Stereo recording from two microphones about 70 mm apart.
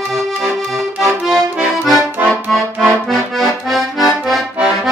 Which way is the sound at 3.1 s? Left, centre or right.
Centre.